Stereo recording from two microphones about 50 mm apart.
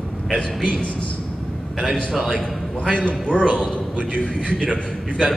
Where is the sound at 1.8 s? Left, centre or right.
Centre.